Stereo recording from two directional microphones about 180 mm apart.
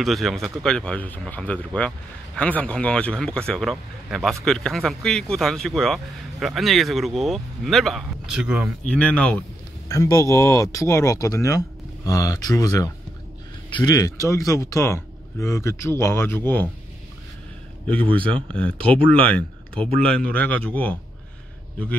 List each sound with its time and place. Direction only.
0.0 s speech: centre (ahead or behind)
8.8 s speech: 5° left (ahead or behind)
9.8 s speech: 15° left (ahead or behind)
18.0 s speech: 30° right (ahead or behind)
19.7 s a man's voice: 30° right (ahead or behind)
20.1 s speech: 5° left (ahead or behind)